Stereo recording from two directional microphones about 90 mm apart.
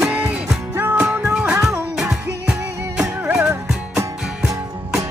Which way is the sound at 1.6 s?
35° right (ahead or behind).